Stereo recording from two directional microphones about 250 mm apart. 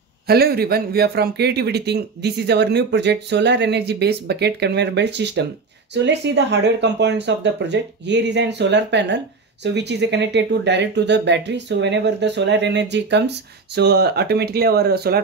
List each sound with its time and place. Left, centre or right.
0.3 s speech: right